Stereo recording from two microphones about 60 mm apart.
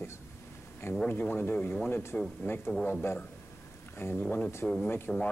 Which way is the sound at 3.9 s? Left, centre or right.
Left.